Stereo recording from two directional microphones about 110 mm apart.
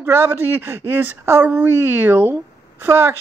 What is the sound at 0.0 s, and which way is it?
A woman's voice, 20° right (ahead or behind).